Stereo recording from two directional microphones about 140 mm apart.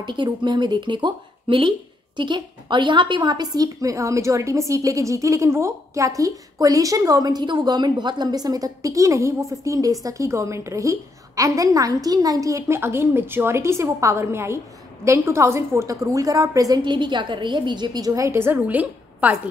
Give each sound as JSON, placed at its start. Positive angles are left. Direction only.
{"t": 0.0, "sound": "a woman's voice", "side_deg": -35}